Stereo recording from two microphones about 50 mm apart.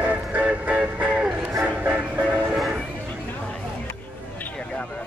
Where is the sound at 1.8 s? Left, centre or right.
Right.